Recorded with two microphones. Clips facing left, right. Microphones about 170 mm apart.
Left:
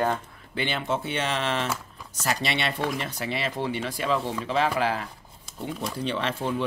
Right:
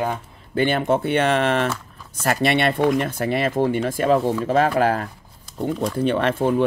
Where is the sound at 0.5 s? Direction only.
50° right (ahead or behind).